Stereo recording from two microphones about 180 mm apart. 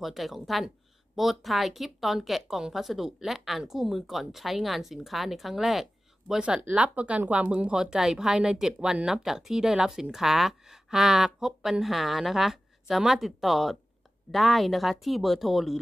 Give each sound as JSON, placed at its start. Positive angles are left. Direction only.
{"t": 0.0, "sound": "a woman's voice", "side_deg": 0}